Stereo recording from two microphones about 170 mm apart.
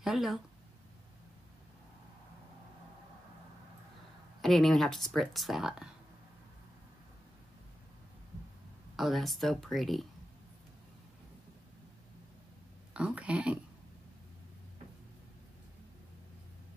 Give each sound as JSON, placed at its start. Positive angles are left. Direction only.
{"t": 0.0, "sound": "speech", "side_deg": 0}
{"t": 4.4, "sound": "speech", "side_deg": 0}
{"t": 8.9, "sound": "speech", "side_deg": 0}
{"t": 12.9, "sound": "speech", "side_deg": -5}